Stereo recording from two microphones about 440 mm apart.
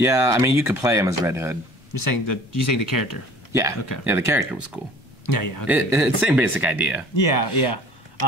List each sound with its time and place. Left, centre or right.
0.0 s speech: centre
2.0 s speech: left
4.0 s speech: centre
5.2 s speech: left
5.7 s speech: centre
7.2 s speech: left